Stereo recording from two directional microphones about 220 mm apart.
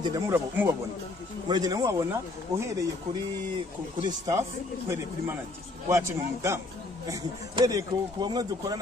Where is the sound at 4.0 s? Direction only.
15° right (ahead or behind).